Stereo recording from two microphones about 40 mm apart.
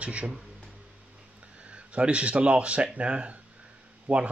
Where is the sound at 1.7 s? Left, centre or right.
Right.